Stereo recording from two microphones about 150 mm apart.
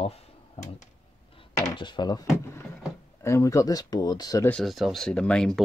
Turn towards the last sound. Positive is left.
turn(degrees=5)  # may be behind; listen again after turning